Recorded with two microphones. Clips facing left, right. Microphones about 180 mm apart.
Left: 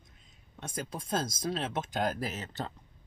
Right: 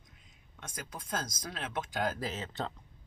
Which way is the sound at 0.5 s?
30° left (ahead or behind).